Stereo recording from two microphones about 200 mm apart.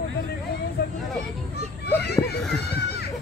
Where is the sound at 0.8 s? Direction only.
50° left (ahead or behind).